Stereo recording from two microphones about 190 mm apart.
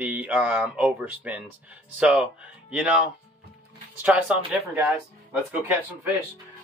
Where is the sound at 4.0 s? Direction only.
5° right (ahead or behind).